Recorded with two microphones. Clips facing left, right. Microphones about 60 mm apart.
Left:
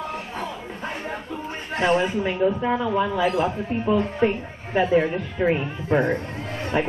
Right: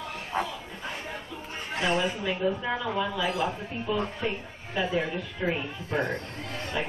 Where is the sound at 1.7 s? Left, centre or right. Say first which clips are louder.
Left 6 dB; left.